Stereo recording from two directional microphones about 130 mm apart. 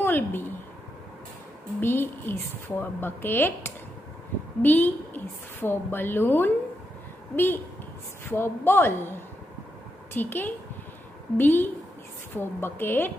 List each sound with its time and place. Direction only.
0.0 s a sound: 15° left (ahead or behind)
1.8 s speech: 15° left (ahead or behind)
10.1 s speech: 15° left (ahead or behind)